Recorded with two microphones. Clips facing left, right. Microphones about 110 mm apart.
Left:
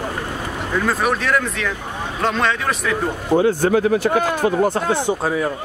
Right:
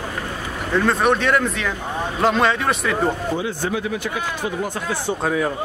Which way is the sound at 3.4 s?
50° left (ahead or behind).